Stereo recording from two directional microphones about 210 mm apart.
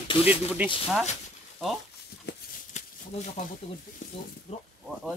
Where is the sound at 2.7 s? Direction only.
35° left (ahead or behind).